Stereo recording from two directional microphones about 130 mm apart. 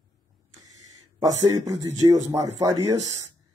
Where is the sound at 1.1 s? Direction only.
25° right (ahead or behind).